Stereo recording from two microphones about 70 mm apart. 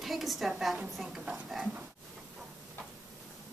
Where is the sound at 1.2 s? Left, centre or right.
Centre.